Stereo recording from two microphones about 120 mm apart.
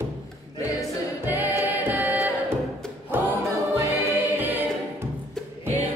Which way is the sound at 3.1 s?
20° right (ahead or behind).